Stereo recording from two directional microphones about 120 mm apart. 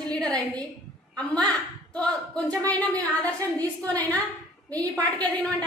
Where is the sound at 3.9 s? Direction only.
15° left (ahead or behind).